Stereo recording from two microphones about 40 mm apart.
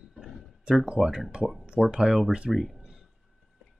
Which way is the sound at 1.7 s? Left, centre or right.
Centre.